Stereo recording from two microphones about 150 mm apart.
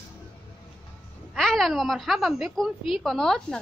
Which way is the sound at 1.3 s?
Centre (ahead or behind).